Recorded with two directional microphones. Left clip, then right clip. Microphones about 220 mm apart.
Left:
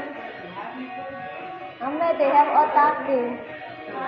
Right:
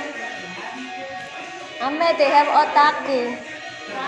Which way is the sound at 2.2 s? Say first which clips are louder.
Right 1 dB; 20° right (ahead or behind).